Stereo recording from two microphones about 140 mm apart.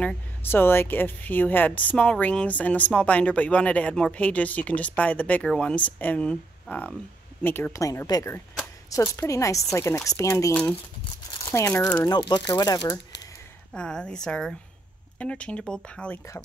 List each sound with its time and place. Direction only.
0.0 s a woman's voice: 10° left (ahead or behind)
13.7 s a woman's voice: 5° left (ahead or behind)